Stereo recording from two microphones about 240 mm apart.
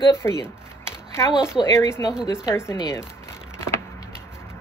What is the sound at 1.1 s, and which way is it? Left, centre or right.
Speech, centre.